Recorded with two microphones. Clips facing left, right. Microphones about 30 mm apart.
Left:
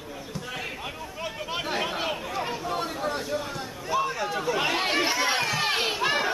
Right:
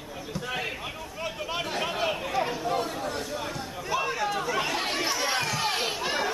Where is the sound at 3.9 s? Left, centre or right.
Centre.